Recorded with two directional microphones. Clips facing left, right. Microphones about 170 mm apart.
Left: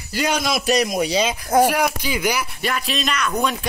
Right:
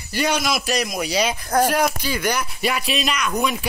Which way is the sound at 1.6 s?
10° left (ahead or behind).